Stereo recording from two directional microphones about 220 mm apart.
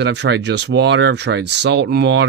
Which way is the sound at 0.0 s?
50° right (ahead or behind).